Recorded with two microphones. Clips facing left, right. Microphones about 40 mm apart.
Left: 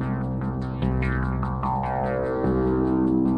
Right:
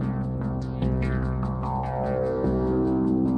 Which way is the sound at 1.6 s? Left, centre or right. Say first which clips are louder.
Left 3 dB; left.